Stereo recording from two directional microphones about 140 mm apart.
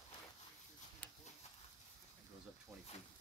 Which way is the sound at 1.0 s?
10° left (ahead or behind).